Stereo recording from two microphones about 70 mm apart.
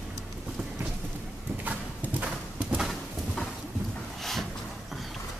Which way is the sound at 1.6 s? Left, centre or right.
Right.